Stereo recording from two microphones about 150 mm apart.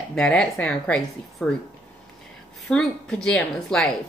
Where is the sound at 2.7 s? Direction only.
5° left (ahead or behind).